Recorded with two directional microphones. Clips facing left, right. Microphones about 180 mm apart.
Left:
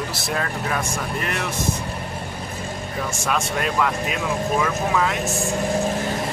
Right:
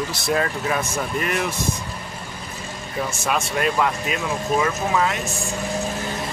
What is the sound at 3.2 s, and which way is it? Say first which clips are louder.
Speech: right 1 dB; 5° right (ahead or behind).